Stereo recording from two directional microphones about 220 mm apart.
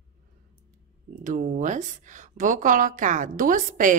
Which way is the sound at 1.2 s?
35° right (ahead or behind).